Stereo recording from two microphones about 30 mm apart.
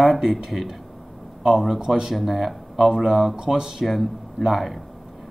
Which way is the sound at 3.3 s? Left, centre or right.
Right.